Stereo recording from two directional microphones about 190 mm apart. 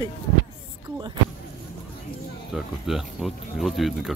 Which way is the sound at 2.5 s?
Centre (ahead or behind).